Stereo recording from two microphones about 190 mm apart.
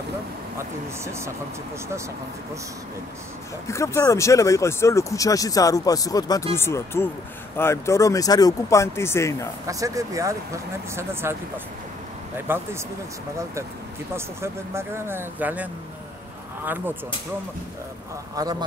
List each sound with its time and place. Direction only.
3.6 s speech: 15° left (ahead or behind)
9.7 s speech: 15° right (ahead or behind)
14.1 s speech: 15° right (ahead or behind)
18.3 s speech: 20° right (ahead or behind)